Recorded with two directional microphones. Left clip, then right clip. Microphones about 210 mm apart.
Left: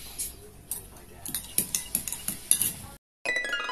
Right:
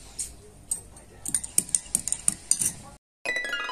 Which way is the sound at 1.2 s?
25° right (ahead or behind).